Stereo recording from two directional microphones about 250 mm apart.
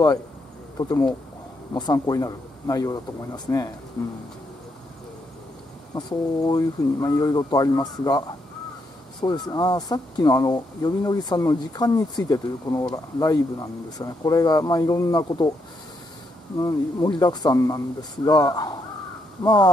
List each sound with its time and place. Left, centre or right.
0.7 s speech: centre
5.9 s speech: centre
9.2 s speech: centre
16.5 s speech: centre